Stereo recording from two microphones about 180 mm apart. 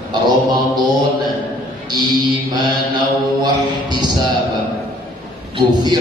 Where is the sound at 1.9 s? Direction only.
25° right (ahead or behind).